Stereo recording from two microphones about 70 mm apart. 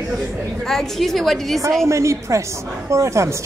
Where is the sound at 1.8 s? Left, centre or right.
Right.